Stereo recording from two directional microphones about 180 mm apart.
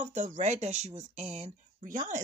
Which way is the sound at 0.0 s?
45° right (ahead or behind).